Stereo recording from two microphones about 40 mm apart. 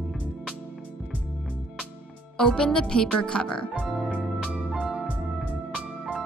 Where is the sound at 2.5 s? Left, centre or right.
Left.